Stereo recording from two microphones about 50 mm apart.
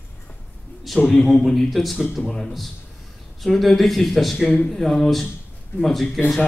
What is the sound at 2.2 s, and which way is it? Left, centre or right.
Speech, centre.